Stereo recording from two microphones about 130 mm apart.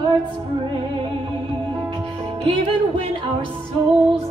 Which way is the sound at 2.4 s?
40° right (ahead or behind).